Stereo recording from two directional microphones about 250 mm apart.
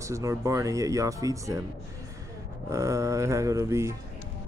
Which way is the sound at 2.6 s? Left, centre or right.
Centre.